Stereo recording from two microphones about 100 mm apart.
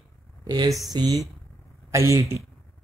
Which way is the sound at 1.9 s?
30° right (ahead or behind).